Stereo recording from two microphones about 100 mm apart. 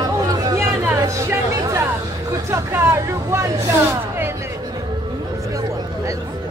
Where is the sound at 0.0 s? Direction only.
40° right (ahead or behind).